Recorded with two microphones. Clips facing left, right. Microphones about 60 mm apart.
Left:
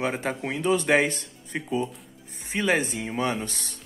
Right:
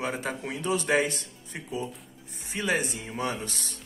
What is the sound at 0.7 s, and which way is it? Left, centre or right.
A man's voice, left.